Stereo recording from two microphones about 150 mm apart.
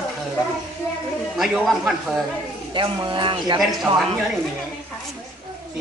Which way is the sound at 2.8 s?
35° right (ahead or behind).